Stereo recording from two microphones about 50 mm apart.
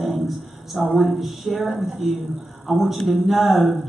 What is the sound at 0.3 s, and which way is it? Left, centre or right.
Speech, centre.